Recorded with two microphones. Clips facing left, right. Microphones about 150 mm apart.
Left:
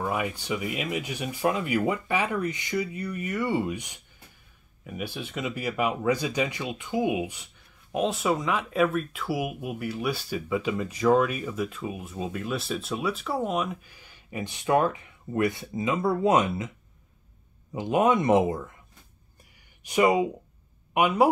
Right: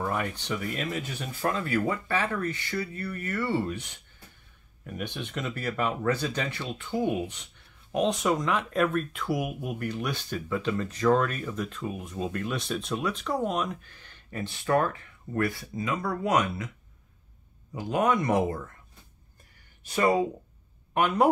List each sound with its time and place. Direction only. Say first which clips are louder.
0.0 s speech: left 1 dB; 10° left (ahead or behind)
17.7 s speech: left 3 dB; 20° left (ahead or behind)
19.8 s speech: left 2 dB; 15° left (ahead or behind)